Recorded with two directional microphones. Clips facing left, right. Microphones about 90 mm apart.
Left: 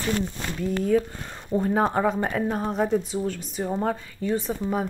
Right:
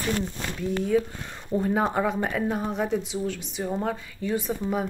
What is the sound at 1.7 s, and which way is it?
Speech, centre (ahead or behind).